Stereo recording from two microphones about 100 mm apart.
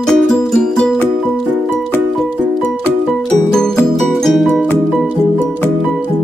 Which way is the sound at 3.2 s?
5° left (ahead or behind).